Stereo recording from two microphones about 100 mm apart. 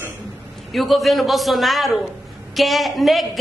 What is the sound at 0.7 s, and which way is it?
A woman's voice, centre (ahead or behind).